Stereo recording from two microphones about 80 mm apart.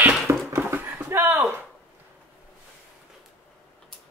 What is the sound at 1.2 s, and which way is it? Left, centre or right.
Speech, right.